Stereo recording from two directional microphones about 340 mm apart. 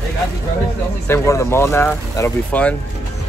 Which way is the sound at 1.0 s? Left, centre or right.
Centre.